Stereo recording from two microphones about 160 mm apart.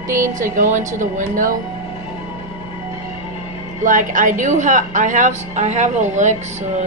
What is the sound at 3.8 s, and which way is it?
Speech, 55° right (ahead or behind).